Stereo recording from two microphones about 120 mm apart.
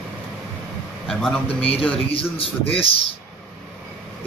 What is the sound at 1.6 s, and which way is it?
Speech, 50° left (ahead or behind).